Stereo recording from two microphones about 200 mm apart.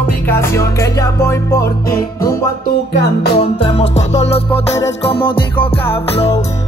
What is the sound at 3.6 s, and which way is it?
Music, 30° left (ahead or behind).